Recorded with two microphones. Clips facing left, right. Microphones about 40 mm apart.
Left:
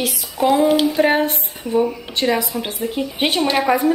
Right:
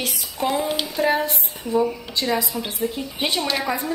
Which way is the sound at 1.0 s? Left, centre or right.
Left.